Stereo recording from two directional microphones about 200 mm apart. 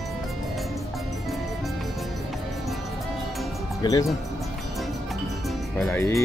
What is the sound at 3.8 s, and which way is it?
Speech, 15° left (ahead or behind).